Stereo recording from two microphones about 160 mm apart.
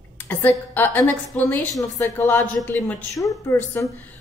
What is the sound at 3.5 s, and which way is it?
Speech, 15° left (ahead or behind).